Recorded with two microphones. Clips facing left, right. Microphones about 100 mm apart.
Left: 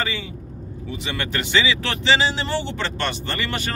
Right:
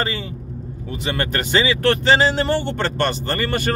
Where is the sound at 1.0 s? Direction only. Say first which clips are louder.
Right 5 dB; 45° right (ahead or behind).